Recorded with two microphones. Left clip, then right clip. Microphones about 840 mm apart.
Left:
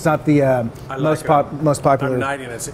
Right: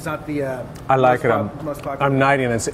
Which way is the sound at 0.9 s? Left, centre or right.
Right.